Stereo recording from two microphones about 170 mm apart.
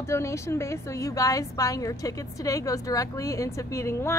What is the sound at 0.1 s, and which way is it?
A woman's voice, 15° left (ahead or behind).